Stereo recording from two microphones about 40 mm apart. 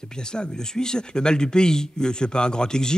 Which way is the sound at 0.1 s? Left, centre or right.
Centre.